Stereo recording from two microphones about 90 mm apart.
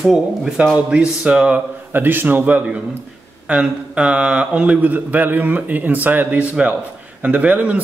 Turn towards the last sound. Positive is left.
turn(degrees=-15)  # may be behind; listen again after turning